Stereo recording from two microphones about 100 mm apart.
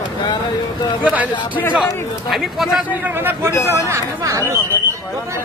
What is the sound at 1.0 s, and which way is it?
Speech, 15° right (ahead or behind).